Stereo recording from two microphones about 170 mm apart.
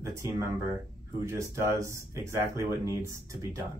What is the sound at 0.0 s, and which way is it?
Speech, 15° right (ahead or behind).